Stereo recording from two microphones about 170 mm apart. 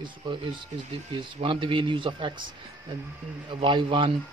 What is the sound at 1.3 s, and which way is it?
Speech, 30° right (ahead or behind).